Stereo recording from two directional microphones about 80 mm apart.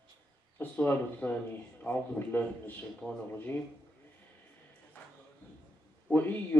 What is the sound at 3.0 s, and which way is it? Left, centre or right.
Speech, centre.